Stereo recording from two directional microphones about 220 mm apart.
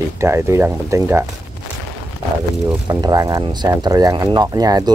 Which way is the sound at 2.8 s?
15° right (ahead or behind).